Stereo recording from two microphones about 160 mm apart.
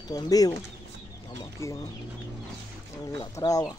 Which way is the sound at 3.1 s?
20° left (ahead or behind).